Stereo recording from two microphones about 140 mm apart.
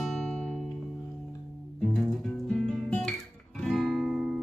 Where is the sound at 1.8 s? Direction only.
5° left (ahead or behind).